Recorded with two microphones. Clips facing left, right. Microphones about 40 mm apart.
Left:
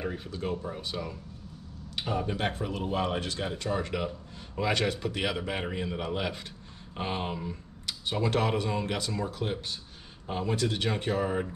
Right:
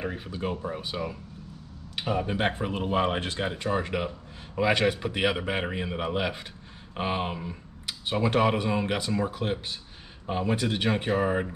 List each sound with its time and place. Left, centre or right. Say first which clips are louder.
0.0 s speech: right 2 dB; centre